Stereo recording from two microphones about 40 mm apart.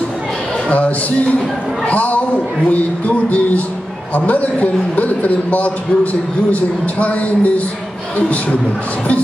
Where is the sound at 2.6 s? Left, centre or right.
Left.